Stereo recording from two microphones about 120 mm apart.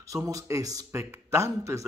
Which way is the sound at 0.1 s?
25° right (ahead or behind).